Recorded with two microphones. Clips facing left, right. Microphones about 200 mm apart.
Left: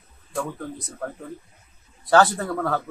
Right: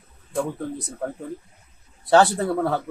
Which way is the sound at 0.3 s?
30° right (ahead or behind).